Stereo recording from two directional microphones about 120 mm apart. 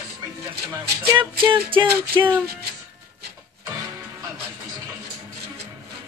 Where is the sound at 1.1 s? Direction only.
45° right (ahead or behind).